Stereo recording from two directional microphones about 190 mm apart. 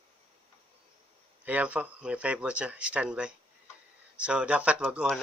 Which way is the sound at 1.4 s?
5° right (ahead or behind).